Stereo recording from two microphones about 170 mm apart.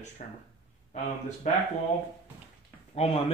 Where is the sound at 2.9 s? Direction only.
35° left (ahead or behind).